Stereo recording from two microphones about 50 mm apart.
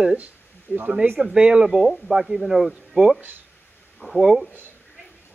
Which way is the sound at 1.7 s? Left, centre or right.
Centre.